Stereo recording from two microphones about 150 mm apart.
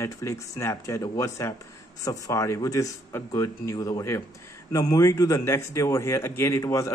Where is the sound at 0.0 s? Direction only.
20° left (ahead or behind).